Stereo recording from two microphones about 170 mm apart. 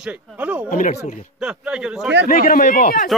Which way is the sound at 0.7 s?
50° left (ahead or behind).